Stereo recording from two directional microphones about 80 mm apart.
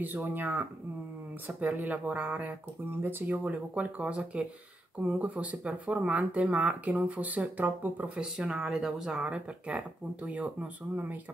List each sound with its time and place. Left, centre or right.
0.0 s speech: right
8.4 s speech: centre